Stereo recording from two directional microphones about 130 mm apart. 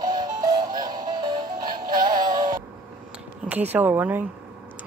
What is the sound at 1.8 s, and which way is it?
Synthetic singing, 90° right.